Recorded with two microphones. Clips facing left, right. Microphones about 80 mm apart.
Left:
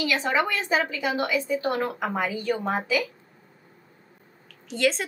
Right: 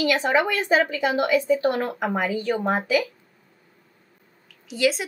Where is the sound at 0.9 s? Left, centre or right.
Right.